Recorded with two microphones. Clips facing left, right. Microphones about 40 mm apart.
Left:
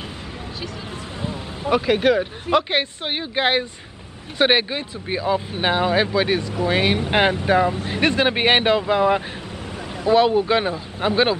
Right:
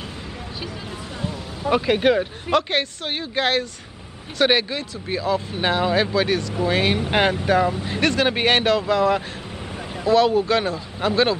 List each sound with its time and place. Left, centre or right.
1.2 s a sound: left
1.7 s speech: centre
2.5 s speech: centre